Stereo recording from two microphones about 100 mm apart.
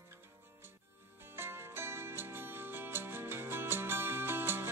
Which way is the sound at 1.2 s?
25° right (ahead or behind).